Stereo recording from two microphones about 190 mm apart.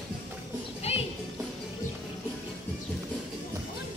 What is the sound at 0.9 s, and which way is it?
Music, 30° left (ahead or behind).